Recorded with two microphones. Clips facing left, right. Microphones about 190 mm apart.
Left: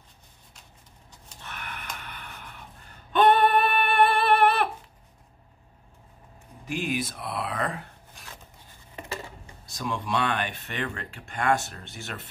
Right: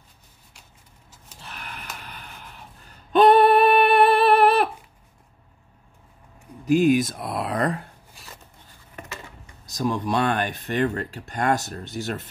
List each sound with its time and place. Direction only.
1.4 s a sound: 35° right (ahead or behind)
3.1 s female singing: 35° right (ahead or behind)
6.6 s speech: 40° right (ahead or behind)
9.7 s speech: 40° right (ahead or behind)